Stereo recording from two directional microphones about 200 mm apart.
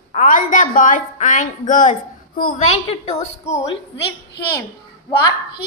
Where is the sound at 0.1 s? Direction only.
40° left (ahead or behind).